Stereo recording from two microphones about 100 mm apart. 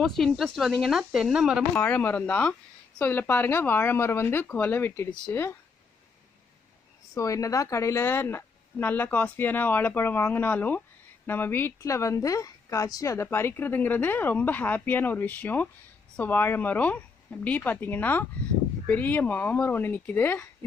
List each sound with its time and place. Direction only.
0.0 s speech: 5° left (ahead or behind)
1.8 s a woman's voice: 15° left (ahead or behind)
7.2 s a woman's voice: 35° left (ahead or behind)